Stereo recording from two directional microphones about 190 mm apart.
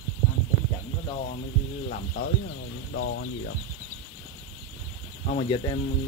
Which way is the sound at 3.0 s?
80° left.